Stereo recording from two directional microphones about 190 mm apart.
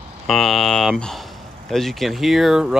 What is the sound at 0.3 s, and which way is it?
Speech, centre (ahead or behind).